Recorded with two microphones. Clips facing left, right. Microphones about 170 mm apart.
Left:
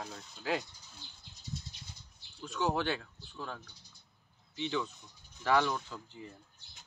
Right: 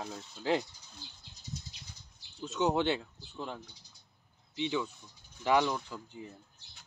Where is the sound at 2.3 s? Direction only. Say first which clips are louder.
Right 3 dB; 20° right (ahead or behind).